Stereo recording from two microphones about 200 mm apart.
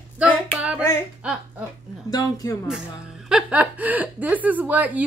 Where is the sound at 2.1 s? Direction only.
20° left (ahead or behind).